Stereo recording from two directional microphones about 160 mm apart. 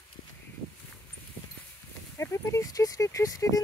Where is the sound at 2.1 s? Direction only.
20° left (ahead or behind).